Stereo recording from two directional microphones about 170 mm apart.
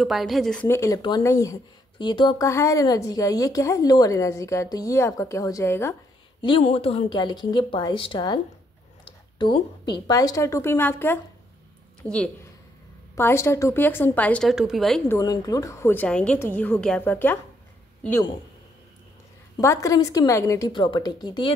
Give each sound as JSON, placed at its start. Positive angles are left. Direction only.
{"t": 0.0, "sound": "speech", "side_deg": 0}
{"t": 0.7, "sound": "speech", "side_deg": 15}
{"t": 6.4, "sound": "speech", "side_deg": 35}
{"t": 9.0, "sound": "a sound", "side_deg": 30}
{"t": 10.0, "sound": "a woman's voice", "side_deg": 20}
{"t": 14.5, "sound": "speech", "side_deg": -5}
{"t": 15.0, "sound": "a woman's voice", "side_deg": 20}
{"t": 19.6, "sound": "speech", "side_deg": 20}